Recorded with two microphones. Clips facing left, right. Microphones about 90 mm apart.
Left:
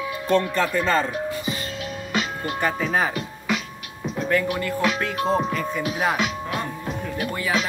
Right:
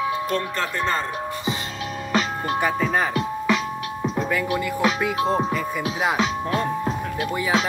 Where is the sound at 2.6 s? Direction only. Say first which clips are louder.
Even; 5° right (ahead or behind).